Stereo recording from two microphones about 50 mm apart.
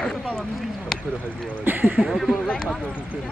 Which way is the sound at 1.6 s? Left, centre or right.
Right.